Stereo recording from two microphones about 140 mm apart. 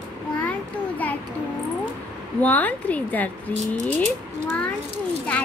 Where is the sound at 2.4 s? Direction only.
10° left (ahead or behind).